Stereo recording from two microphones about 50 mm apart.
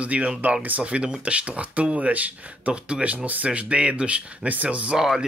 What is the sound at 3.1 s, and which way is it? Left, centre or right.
Speech, right.